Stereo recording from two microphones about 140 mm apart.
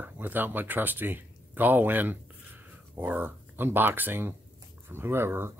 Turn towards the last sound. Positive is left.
turn(degrees=-15)  # may be behind; listen again after turning